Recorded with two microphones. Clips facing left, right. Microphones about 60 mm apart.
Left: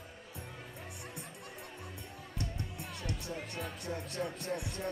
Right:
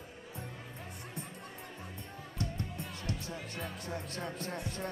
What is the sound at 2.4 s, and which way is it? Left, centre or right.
Music, right.